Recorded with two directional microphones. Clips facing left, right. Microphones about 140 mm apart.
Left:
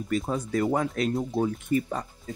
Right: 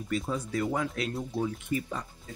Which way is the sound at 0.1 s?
45° left (ahead or behind).